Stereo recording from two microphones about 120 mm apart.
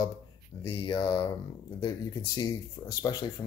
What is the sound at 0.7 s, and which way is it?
Speech, 50° left (ahead or behind).